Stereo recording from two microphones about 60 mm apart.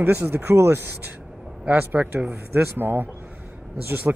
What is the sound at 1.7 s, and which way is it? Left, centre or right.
Speech, right.